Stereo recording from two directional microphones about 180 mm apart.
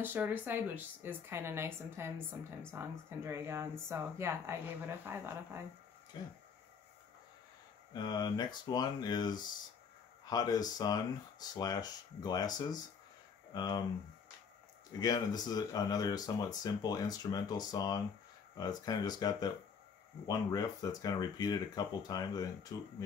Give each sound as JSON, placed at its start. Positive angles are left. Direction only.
{"t": 0.0, "sound": "speech", "side_deg": -10}
{"t": 7.9, "sound": "speech", "side_deg": 20}
{"t": 15.0, "sound": "speech", "side_deg": 20}